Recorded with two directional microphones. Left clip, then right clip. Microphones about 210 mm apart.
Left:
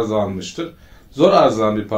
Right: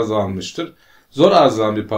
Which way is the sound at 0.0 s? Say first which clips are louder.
Even; 45° right (ahead or behind).